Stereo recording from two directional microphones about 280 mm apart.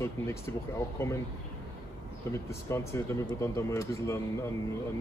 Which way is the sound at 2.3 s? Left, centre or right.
Centre.